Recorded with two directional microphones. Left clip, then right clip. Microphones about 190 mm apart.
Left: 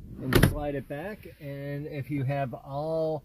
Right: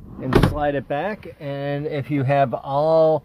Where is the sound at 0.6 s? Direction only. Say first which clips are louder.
Right 12 dB; centre (ahead or behind).